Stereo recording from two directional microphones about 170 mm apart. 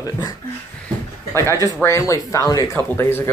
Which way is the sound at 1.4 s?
20° left (ahead or behind).